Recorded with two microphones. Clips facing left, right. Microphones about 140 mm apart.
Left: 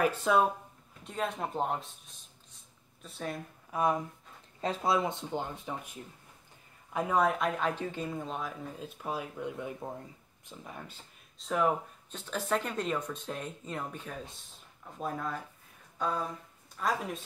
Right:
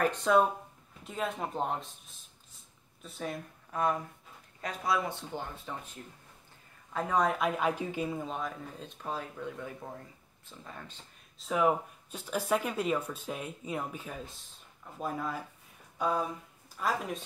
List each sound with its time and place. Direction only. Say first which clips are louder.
0.0 s speech: right 1 dB; 5° left (ahead or behind)
3.7 s speech: left 1 dB; 15° left (ahead or behind)
4.6 s speech: left 3 dB; 25° left (ahead or behind)
6.9 s speech: left 1 dB; 10° left (ahead or behind)
11.3 s a woman's voice: right 1 dB; centre (ahead or behind)